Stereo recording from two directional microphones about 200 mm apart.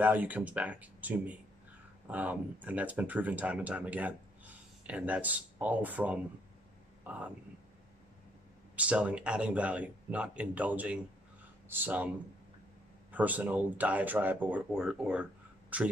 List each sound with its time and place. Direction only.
0.0 s speech: 10° right (ahead or behind)
8.7 s speech: 5° right (ahead or behind)
13.1 s speech: 10° right (ahead or behind)